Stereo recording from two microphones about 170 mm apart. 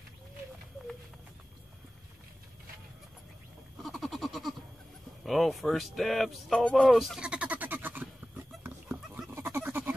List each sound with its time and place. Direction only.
3.8 s goat: centre (ahead or behind)
5.2 s speech: centre (ahead or behind)
8.6 s pig: 10° right (ahead or behind)